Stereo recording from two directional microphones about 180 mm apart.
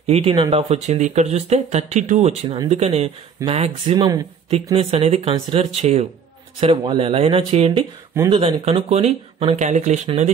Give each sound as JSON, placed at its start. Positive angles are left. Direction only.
{"t": 0.0, "sound": "speech", "side_deg": -35}
{"t": 4.7, "sound": "speech", "side_deg": -35}
{"t": 6.6, "sound": "speech", "side_deg": -25}